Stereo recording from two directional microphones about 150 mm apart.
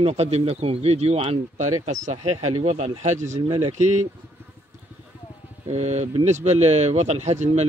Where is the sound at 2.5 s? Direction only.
40° right (ahead or behind).